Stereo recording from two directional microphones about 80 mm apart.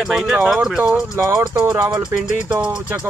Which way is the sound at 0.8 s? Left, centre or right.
Right.